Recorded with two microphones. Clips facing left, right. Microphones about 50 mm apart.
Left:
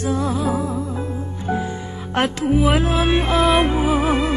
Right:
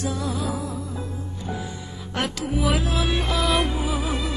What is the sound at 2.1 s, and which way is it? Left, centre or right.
Music, left.